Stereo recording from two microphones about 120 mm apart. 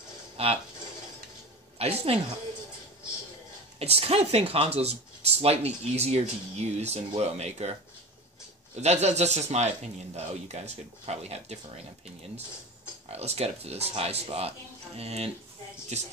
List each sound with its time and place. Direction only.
0.4 s speech: 55° right (ahead or behind)
1.8 s speech: 55° right (ahead or behind)
3.8 s speech: 60° right (ahead or behind)
8.7 s a man's voice: 65° right (ahead or behind)
13.1 s speech: 60° right (ahead or behind)